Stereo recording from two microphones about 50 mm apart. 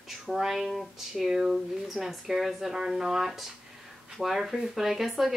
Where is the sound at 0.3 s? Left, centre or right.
Centre.